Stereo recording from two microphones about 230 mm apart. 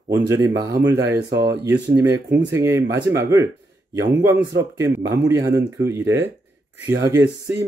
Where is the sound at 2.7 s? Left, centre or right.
Right.